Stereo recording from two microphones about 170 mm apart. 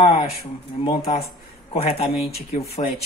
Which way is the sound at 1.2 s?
40° left (ahead or behind).